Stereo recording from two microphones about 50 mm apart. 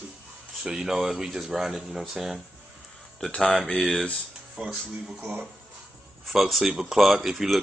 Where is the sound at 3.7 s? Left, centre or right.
Centre.